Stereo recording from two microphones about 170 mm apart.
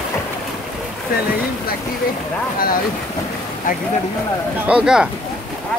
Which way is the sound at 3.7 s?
50° left (ahead or behind).